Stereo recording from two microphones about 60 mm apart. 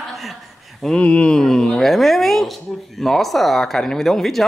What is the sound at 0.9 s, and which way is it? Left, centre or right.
Speech, centre.